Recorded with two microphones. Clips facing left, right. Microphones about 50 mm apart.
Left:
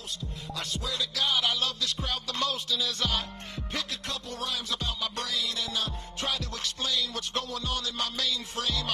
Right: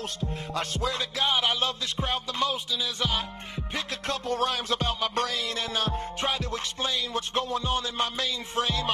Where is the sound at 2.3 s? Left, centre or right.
Centre.